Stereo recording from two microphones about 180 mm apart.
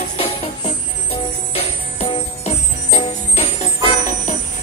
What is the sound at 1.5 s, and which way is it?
Music, 35° left (ahead or behind).